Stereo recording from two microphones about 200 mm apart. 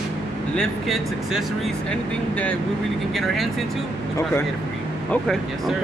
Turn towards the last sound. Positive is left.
turn(degrees=0)  # may be behind; listen again after turning